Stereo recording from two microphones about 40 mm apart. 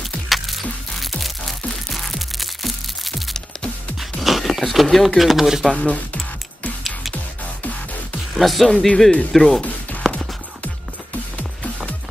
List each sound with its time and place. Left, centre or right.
0.3 s music: centre
5.0 s speech: centre
5.7 s speech: left
6.8 s music: centre
8.4 s speech: centre
8.8 s speech: centre
10.0 s music: centre